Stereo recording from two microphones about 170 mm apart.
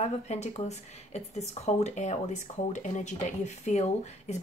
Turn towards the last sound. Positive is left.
turn(degrees=40)  # may be behind; listen again after turning